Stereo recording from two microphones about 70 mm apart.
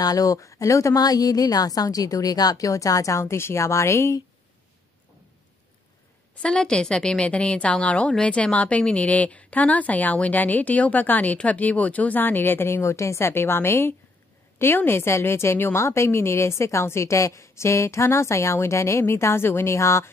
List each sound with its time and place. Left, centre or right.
0.0 s a woman's voice: left
6.4 s a woman's voice: centre; by 20.1 s left